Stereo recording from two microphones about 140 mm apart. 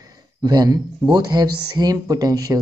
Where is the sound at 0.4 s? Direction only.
30° right (ahead or behind).